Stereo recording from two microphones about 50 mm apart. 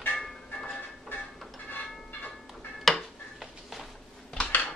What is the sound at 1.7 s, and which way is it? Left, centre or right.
Train, left.